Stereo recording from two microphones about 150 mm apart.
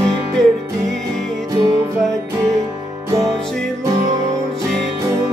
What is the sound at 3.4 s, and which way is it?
Music, 5° left (ahead or behind).